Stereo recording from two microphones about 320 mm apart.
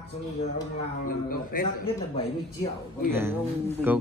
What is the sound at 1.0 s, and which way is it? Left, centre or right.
Speech, left.